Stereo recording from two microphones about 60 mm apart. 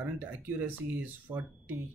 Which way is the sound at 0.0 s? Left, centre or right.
Right.